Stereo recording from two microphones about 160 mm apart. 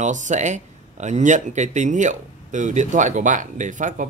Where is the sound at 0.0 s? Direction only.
50° right (ahead or behind).